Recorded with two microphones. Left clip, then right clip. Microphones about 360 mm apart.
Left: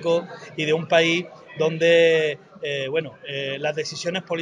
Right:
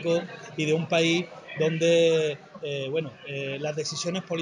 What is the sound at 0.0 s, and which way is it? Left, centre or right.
A man's voice, left.